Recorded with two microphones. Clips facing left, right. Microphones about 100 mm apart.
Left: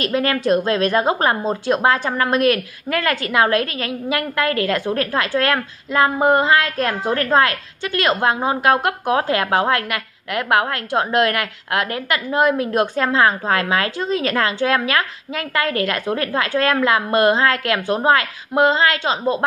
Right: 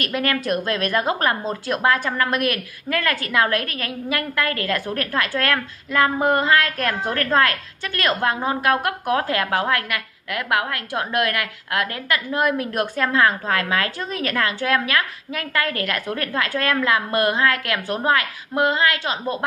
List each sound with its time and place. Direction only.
0.0 s a woman's voice: 25° left (ahead or behind)